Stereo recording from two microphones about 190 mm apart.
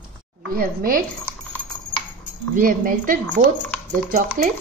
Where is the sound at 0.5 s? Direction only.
50° right (ahead or behind).